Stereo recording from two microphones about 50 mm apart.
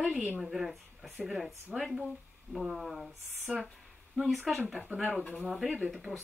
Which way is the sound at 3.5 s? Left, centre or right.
Right.